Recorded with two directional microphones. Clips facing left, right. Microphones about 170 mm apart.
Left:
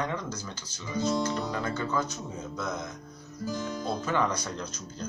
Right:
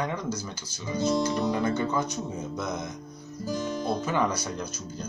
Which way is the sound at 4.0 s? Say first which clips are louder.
Right 1 dB; 10° right (ahead or behind).